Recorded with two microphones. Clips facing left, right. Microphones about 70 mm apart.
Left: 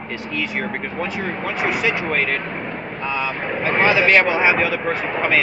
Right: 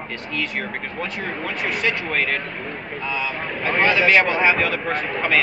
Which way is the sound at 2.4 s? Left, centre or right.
Left.